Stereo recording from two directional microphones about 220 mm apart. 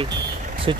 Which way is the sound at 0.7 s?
20° right (ahead or behind).